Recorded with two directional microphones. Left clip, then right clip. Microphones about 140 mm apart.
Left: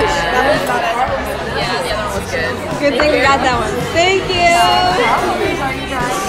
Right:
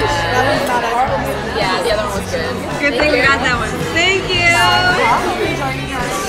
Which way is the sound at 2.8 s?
25° left (ahead or behind).